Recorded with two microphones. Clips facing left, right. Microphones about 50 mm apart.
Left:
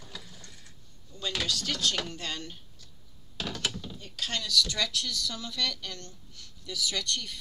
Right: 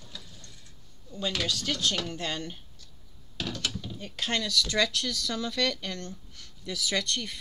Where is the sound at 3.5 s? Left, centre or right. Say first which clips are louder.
Left 1 dB; centre.